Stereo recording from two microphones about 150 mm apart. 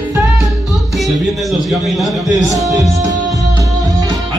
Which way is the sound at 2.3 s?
20° left (ahead or behind).